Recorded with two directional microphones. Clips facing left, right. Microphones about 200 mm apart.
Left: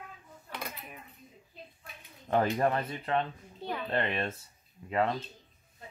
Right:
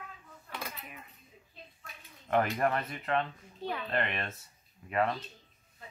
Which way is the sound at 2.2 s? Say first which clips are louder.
Left 2 dB; 25° left (ahead or behind).